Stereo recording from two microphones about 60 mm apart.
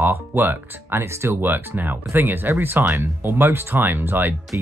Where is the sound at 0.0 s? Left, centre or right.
Right.